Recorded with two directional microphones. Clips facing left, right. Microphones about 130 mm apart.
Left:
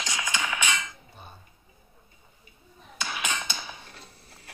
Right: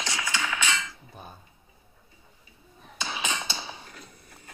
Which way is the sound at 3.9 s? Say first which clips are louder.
Right 2 dB; 30° left (ahead or behind).